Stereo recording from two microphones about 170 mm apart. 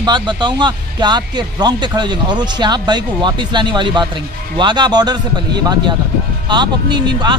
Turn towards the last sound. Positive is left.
turn(degrees=-25)  # may be behind; listen again after turning